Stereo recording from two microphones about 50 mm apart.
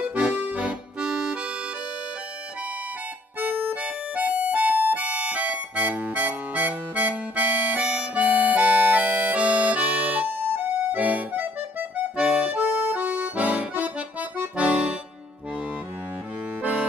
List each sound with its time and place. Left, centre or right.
0.3 s accordion: right
1.1 s accordion: centre
3.3 s music: right
12.2 s accordion: centre
12.5 s accordion: right